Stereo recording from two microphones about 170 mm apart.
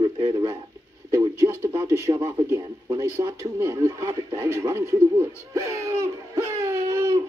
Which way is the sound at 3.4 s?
15° right (ahead or behind).